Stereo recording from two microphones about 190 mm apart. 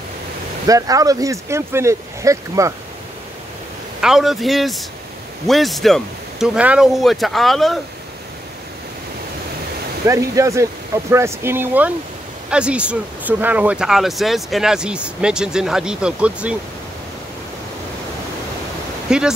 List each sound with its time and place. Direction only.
0.7 s speech: 20° right (ahead or behind)
4.0 s speech: centre (ahead or behind)
10.0 s speech: 15° right (ahead or behind)
19.0 s speech: 5° right (ahead or behind)